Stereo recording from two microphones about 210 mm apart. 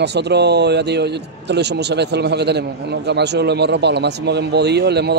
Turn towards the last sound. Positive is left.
turn(degrees=-50)  # may be behind; listen again after turning